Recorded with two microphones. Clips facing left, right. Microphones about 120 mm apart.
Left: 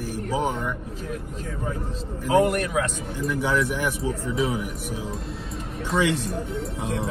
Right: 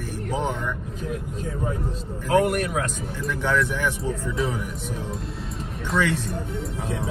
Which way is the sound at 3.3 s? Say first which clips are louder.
Even; 10° left (ahead or behind).